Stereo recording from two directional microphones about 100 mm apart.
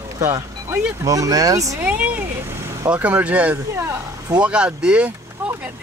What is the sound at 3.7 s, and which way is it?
Speech, 30° right (ahead or behind).